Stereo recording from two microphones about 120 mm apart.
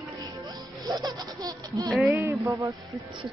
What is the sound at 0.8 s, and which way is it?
Speech, 30° right (ahead or behind).